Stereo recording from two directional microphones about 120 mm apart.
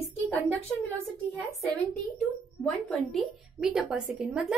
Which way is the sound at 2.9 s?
5° left (ahead or behind).